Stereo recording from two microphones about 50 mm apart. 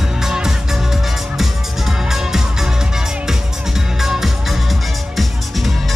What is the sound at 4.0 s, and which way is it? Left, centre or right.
Music, centre.